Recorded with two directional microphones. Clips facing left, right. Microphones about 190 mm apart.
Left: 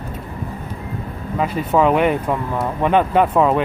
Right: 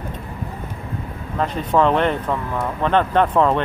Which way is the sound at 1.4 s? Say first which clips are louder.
Left 1 dB; 10° left (ahead or behind).